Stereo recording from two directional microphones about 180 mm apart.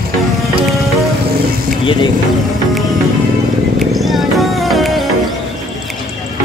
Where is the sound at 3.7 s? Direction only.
Centre (ahead or behind).